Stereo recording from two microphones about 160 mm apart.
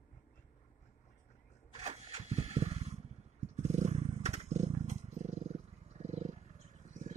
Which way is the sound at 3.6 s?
45° right (ahead or behind).